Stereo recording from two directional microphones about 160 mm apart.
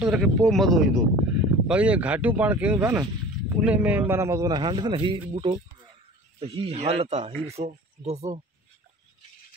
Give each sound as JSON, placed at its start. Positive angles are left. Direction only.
{"t": 0.0, "sound": "a man's voice", "side_deg": -5}